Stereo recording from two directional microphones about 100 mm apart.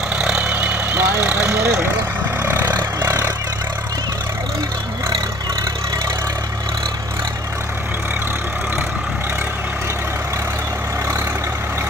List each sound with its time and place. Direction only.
0.2 s vehicle: 10° right (ahead or behind)
1.2 s speech: 20° right (ahead or behind)
2.7 s vehicle: 20° right (ahead or behind)